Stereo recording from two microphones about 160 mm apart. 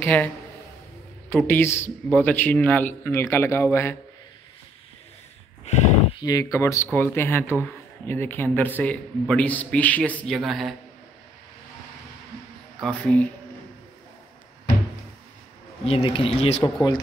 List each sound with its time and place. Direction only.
0.0 s speech: 10° left (ahead or behind)
1.3 s speech: 15° left (ahead or behind)
5.7 s speech: 45° left (ahead or behind)
6.1 s speech: 20° left (ahead or behind); by 10.7 s centre (ahead or behind)
12.8 s speech: 10° left (ahead or behind)
15.8 s speech: 35° left (ahead or behind)
16.6 s speech: 25° left (ahead or behind)